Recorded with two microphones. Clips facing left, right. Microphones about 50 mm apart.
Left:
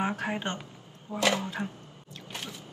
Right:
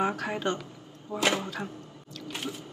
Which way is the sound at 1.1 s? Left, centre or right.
Left.